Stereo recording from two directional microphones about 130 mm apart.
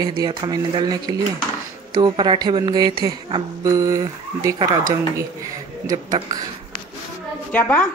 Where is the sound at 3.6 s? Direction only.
25° right (ahead or behind).